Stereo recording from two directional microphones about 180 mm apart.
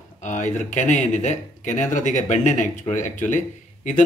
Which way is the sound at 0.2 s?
45° left (ahead or behind).